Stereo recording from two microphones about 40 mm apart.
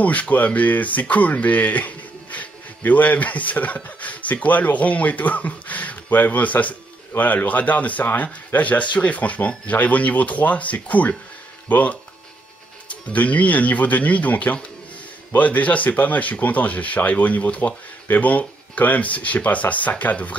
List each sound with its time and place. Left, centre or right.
0.0 s speech: left
13.1 s speech: left